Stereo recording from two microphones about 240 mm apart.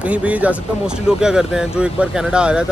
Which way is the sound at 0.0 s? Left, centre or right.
Centre.